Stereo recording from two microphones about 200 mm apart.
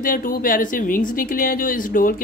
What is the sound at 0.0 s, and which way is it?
Speech, 45° left (ahead or behind).